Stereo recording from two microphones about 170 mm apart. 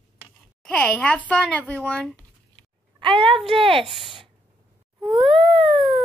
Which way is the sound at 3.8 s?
Centre (ahead or behind).